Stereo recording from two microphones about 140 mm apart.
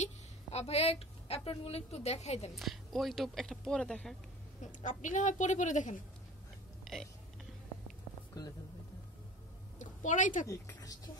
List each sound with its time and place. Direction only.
0.0 s a woman's voice: 50° left (ahead or behind)
2.5 s speech: centre (ahead or behind)
4.8 s a woman's voice: 65° left (ahead or behind)
6.8 s burping: centre (ahead or behind)
8.4 s speech: 25° left (ahead or behind)
9.8 s a sound: 65° left (ahead or behind)
10.4 s speech: 20° left (ahead or behind)